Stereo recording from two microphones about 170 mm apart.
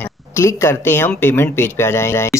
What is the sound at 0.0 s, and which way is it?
Speech, 15° left (ahead or behind).